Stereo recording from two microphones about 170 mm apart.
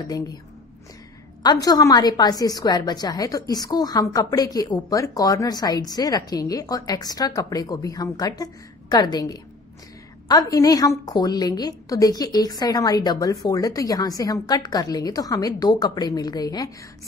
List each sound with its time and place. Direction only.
0.0 s a woman's voice: 20° left (ahead or behind)
1.4 s a woman's voice: 25° left (ahead or behind)